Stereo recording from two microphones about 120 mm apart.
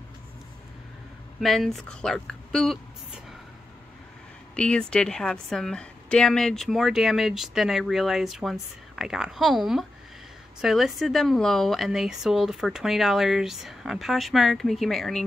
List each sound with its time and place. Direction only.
1.4 s a woman's voice: centre (ahead or behind)
4.6 s a woman's voice: 10° left (ahead or behind)